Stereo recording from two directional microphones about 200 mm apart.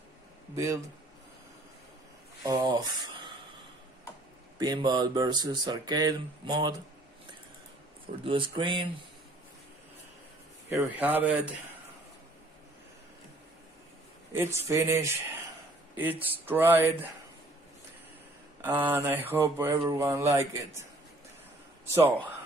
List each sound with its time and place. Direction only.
0.6 s speech: 15° right (ahead or behind)
2.4 s speech: 20° right (ahead or behind)
4.6 s speech: 20° right (ahead or behind)
8.2 s speech: 25° right (ahead or behind)
10.7 s speech: 10° right (ahead or behind)
14.3 s speech: 15° right (ahead or behind)
18.6 s speech: 10° right (ahead or behind)